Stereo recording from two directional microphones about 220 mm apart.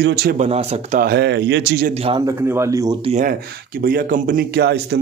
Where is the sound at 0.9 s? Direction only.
45° right (ahead or behind).